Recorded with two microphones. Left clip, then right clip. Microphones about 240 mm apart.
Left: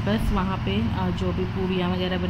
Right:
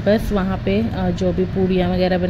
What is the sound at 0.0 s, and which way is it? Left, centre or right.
A woman's voice, right.